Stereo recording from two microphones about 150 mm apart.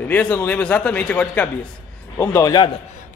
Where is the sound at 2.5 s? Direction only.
35° left (ahead or behind).